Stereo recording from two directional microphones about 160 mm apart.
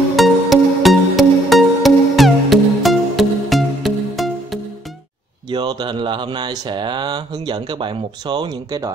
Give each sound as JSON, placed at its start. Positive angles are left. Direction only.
{"t": 0.1, "sound": "music", "side_deg": 0}
{"t": 5.5, "sound": "mantra", "side_deg": -25}